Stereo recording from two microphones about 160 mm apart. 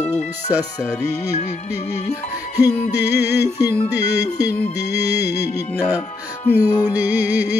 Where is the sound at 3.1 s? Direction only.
90° left.